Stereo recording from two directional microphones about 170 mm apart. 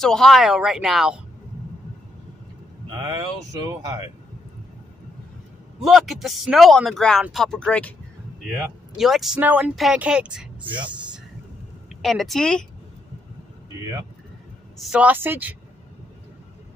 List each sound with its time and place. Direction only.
0.0 s speech: centre (ahead or behind)
2.9 s speech: 20° right (ahead or behind)
5.8 s speech: centre (ahead or behind)
12.0 s speech: centre (ahead or behind)
14.8 s a woman's voice: 5° right (ahead or behind)